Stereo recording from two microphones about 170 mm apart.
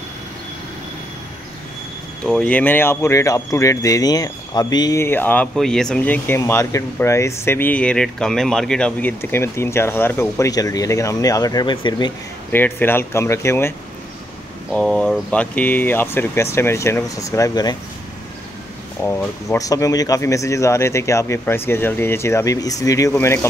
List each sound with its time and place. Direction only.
2.2 s speech: 5° left (ahead or behind); by 12.1 s 25° left (ahead or behind)
12.5 s speech: 10° left (ahead or behind)
14.7 s speech: 5° left (ahead or behind); by 17.7 s 20° left (ahead or behind)
19.0 s speech: 10° left (ahead or behind)
19.6 s speech: 20° left (ahead or behind)